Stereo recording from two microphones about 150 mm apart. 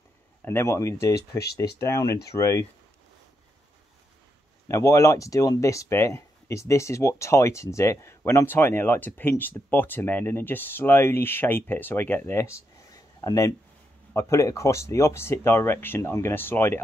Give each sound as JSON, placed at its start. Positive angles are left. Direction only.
{"t": 0.5, "sound": "speech", "side_deg": 20}
{"t": 4.6, "sound": "speech", "side_deg": 20}